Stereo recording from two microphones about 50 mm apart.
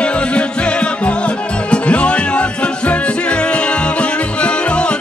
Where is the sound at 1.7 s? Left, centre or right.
Left.